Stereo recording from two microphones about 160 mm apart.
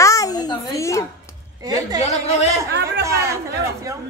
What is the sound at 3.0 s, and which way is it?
Speech, 20° right (ahead or behind).